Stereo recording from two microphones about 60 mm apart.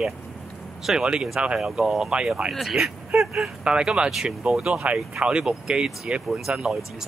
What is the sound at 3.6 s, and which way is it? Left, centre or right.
Speech, centre.